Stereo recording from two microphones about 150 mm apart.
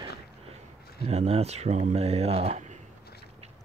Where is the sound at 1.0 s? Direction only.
45° right (ahead or behind).